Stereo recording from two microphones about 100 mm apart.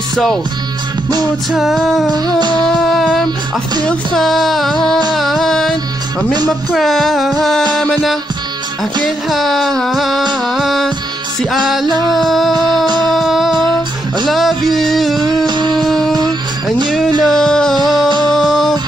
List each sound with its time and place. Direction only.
0.1 s music: 5° left (ahead or behind)
1.5 s music: centre (ahead or behind)
2.0 s humming: 40° right (ahead or behind)
2.6 s a sound: centre (ahead or behind)
3.8 s music: 5° left (ahead or behind)
12.5 s humming: 45° right (ahead or behind)
13.0 s music: centre (ahead or behind)
15.1 s music: 45° right (ahead or behind)
15.8 s music: centre (ahead or behind)
16.1 s music: 45° right (ahead or behind)
17.2 s music: 5° left (ahead or behind)